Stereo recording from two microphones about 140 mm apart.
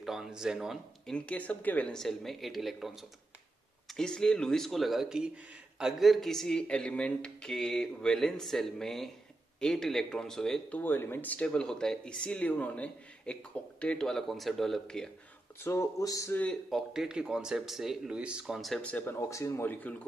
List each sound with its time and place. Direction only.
0.0 s speech: centre (ahead or behind)
1.1 s speech: 10° left (ahead or behind)
15.6 s speech: 20° left (ahead or behind)
16.7 s speech: 5° right (ahead or behind); by 20.0 s 15° left (ahead or behind)